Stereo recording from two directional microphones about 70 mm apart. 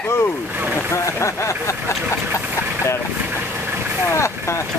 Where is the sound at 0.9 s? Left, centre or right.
Left.